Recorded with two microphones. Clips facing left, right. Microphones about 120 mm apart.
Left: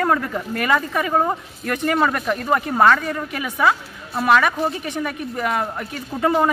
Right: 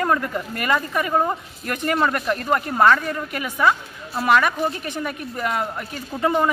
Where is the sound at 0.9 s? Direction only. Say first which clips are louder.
Left 1 dB; 5° left (ahead or behind).